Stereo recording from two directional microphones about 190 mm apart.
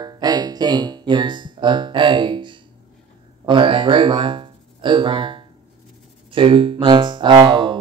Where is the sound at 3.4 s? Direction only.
25° right (ahead or behind).